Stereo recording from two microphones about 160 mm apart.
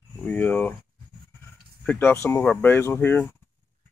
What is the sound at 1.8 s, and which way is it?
Speech, 10° left (ahead or behind).